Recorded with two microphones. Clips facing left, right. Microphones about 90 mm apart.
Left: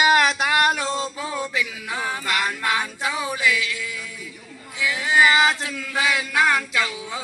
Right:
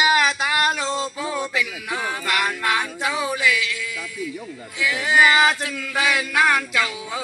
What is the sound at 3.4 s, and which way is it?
Music, 35° left (ahead or behind).